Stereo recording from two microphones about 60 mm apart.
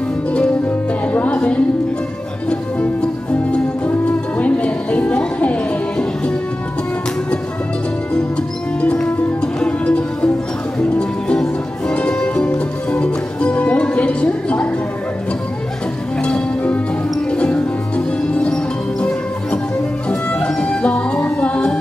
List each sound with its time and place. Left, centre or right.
1.0 s music: left
3.5 s music: left
8.8 s music: centre
16.2 s music: centre